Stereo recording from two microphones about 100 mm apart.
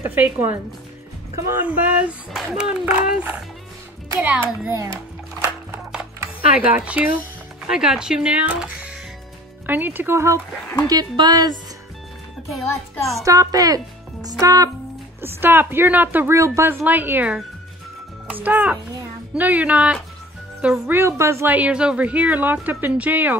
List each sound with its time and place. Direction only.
0.0 s a woman's voice: 20° right (ahead or behind)
1.6 s a woman's voice: 15° right (ahead or behind)
5.4 s a sound: 5° right (ahead or behind)
6.6 s a woman's voice: 15° right (ahead or behind); by 10.4 s 30° right (ahead or behind)
10.9 s speech: 40° right (ahead or behind)
13.2 s speech: 35° right (ahead or behind)
15.2 s a woman's voice: 20° right (ahead or behind); by 20.9 s 5° right (ahead or behind)
20.9 s a woman's voice: 25° right (ahead or behind)
21.5 s a woman's voice: 10° right (ahead or behind)